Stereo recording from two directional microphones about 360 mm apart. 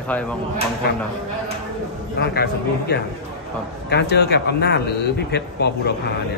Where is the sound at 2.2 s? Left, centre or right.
Left.